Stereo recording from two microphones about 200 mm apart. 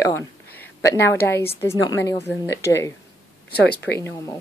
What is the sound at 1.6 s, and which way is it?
Speech, 15° left (ahead or behind).